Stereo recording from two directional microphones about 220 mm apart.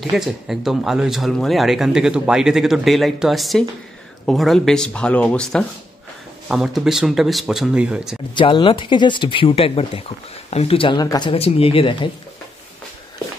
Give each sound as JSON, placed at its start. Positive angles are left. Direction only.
{"t": 0.1, "sound": "speech", "side_deg": 0}
{"t": 8.4, "sound": "speech", "side_deg": 20}